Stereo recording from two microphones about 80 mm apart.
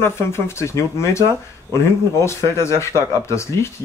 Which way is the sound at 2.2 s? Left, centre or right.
Left.